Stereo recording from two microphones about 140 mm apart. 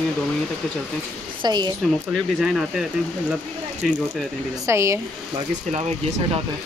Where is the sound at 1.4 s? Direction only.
30° right (ahead or behind).